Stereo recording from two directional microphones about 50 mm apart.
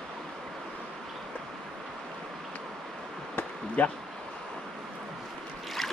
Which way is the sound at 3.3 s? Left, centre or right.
Left.